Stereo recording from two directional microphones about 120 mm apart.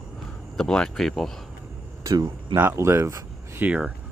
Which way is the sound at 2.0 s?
25° right (ahead or behind).